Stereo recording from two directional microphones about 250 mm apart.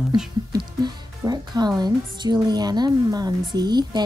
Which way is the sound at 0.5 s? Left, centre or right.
Centre.